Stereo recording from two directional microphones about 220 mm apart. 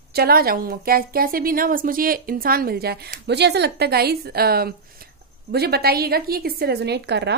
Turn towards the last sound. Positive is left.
turn(degrees=-50)  # may be behind; listen again after turning